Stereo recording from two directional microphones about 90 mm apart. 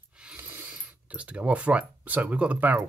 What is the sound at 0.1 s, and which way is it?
Mechanisms, 10° right (ahead or behind).